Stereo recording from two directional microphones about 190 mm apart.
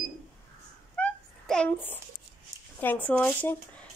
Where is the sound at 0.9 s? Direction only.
5° left (ahead or behind).